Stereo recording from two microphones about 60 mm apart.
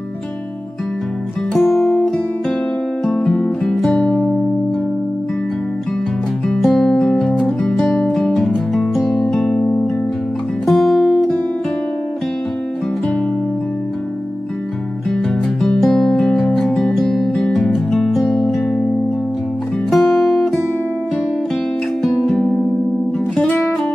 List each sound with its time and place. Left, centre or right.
1.6 s music: centre
2.0 s music: centre
6.6 s music: centre
15.0 s music: centre
19.9 s music: centre
22.0 s music: centre
23.3 s music: left